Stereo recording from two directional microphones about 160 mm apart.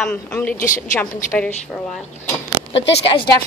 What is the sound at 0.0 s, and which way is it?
A woman's voice, 5° left (ahead or behind).